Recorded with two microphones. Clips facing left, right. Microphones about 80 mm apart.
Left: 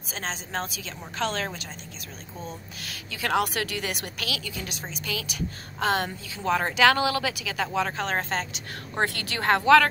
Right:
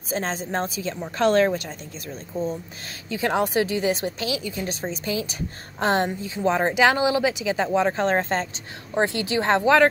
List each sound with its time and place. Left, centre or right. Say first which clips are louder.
0.1 s a woman's voice: right 6 dB; right
3.1 s speech: right 3 dB; right
4.6 s a woman's voice: right 7 dB; right
6.0 s speech: right 5 dB; right
8.9 s speech: right 6 dB; right